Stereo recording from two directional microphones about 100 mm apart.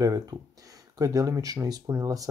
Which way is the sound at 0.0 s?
35° right (ahead or behind).